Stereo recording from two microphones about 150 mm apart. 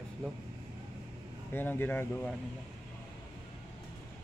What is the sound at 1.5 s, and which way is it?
Speech, 15° left (ahead or behind).